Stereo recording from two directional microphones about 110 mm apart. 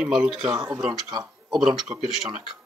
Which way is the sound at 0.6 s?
30° right (ahead or behind).